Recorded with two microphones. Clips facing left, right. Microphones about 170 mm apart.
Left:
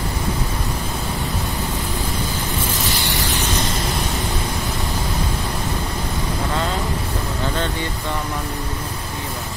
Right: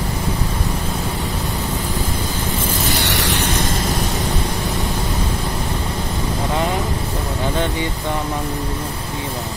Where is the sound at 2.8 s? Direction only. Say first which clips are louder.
Right 3 dB; 75° right (ahead or behind).